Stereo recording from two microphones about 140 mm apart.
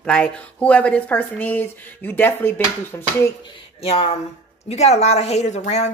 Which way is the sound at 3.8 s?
45° left (ahead or behind).